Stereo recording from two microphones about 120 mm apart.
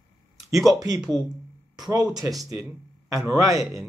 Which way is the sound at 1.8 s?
35° right (ahead or behind).